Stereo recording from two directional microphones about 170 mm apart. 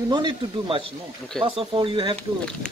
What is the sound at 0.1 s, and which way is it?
Speech, 30° right (ahead or behind).